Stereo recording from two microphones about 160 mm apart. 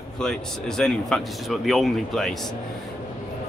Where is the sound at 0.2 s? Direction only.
5° left (ahead or behind).